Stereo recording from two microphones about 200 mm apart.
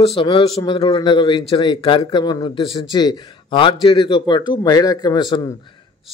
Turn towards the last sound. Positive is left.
turn(degrees=20)  # may be behind; listen again after turning